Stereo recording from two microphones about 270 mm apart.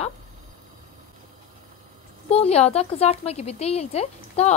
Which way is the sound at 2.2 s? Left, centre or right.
Left.